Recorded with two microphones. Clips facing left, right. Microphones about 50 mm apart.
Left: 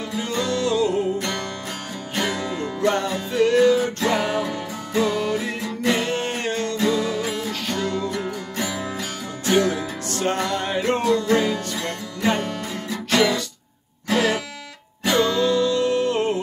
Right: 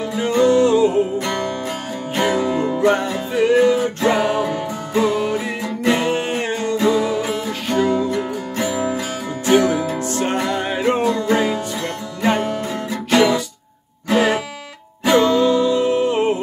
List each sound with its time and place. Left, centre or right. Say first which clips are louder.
0.0 s music: right 9 dB; right